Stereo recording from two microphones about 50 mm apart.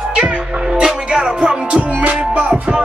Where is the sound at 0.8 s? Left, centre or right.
Centre; by 2.4 s right.